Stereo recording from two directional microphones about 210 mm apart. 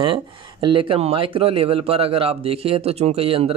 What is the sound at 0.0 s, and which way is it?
Speech, 25° right (ahead or behind).